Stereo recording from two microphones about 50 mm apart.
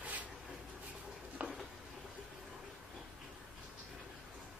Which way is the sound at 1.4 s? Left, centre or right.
Right.